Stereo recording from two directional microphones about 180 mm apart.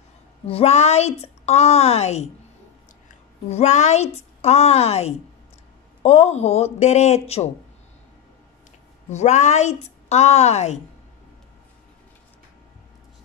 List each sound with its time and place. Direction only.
0.5 s a woman's voice: 35° left (ahead or behind)
3.4 s a woman's voice: 40° left (ahead or behind)
9.1 s a woman's voice: 40° left (ahead or behind)